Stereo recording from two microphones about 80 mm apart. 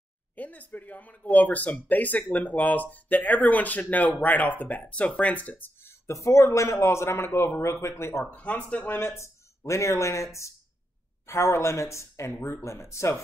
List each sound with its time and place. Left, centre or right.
0.4 s speech: left
8.3 s speech: centre
9.1 s speech: left